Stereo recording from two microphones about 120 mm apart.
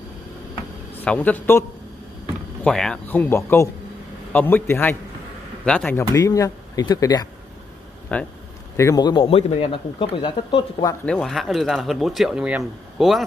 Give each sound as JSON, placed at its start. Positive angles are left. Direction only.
{"t": 1.0, "sound": "a man's voice", "side_deg": 10}
{"t": 2.6, "sound": "speech", "side_deg": 5}
{"t": 3.1, "sound": "a man's voice", "side_deg": 15}
{"t": 5.9, "sound": "speech", "side_deg": 25}
{"t": 8.1, "sound": "a man's voice", "side_deg": 10}
{"t": 8.7, "sound": "a man's voice", "side_deg": 30}
{"t": 9.5, "sound": "speech", "side_deg": 50}
{"t": 11.1, "sound": "speech", "side_deg": 5}